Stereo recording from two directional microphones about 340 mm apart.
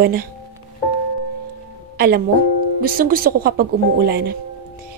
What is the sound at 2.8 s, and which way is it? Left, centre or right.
A woman's voice, right.